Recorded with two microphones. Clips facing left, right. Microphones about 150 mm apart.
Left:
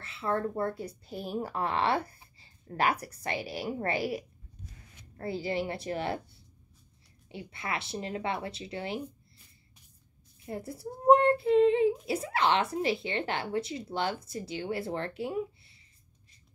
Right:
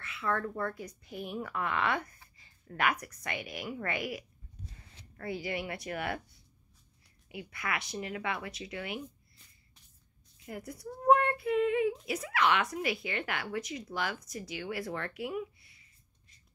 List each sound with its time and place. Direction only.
0.0 s a woman's voice: 30° left (ahead or behind)
10.4 s speech: 30° left (ahead or behind)